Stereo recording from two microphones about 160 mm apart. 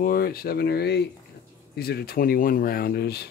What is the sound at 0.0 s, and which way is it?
Speech, 70° left (ahead or behind).